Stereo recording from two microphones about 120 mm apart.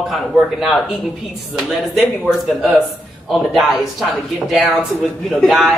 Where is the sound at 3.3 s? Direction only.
Centre (ahead or behind).